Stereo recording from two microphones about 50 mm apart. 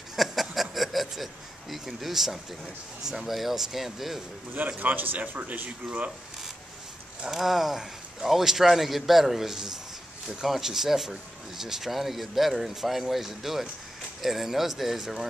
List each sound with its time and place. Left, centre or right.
0.1 s speech: centre
4.7 s speech: right
7.2 s speech: centre